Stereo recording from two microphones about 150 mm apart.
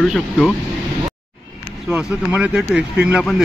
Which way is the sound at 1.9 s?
10° right (ahead or behind).